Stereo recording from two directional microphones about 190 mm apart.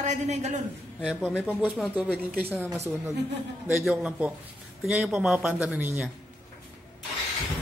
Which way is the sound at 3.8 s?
5° right (ahead or behind).